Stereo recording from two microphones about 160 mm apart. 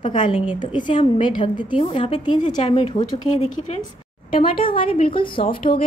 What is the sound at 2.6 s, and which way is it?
Speech, 30° left (ahead or behind).